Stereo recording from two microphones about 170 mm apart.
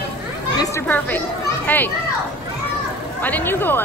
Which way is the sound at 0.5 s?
20° left (ahead or behind).